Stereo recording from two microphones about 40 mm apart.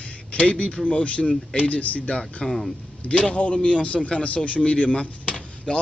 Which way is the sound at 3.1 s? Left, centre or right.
Left.